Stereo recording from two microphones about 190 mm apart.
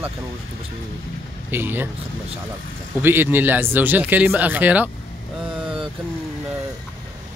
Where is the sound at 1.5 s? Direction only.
10° right (ahead or behind).